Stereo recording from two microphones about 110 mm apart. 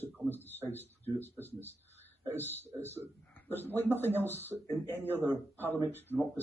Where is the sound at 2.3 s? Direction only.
20° left (ahead or behind).